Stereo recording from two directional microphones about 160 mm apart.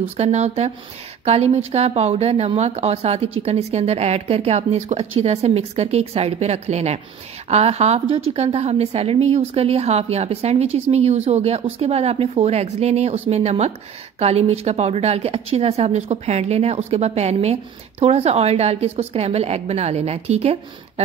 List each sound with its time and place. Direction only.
0.2 s speech: 45° right (ahead or behind)